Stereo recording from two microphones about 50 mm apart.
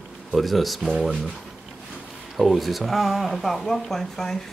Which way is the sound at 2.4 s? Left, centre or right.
Centre.